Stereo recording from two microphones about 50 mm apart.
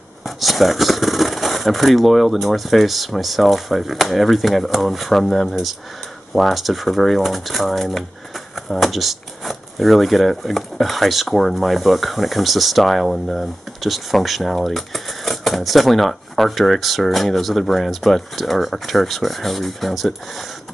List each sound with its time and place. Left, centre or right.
0.4 s speech: centre